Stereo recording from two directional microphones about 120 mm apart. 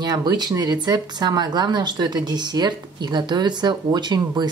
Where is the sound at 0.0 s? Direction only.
35° right (ahead or behind).